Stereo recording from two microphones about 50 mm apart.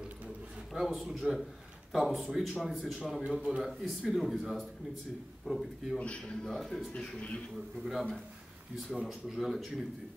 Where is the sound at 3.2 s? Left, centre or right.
Centre.